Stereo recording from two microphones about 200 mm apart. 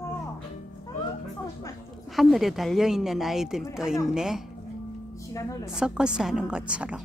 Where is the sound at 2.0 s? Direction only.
Centre (ahead or behind).